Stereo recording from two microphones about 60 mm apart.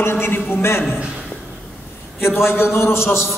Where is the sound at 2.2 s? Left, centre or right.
Left.